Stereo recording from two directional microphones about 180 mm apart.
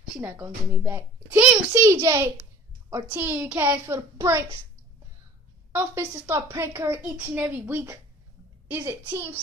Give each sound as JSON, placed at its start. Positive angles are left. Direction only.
{"t": 0.2, "sound": "a child's voice", "side_deg": -15}
{"t": 5.7, "sound": "a child's voice", "side_deg": -10}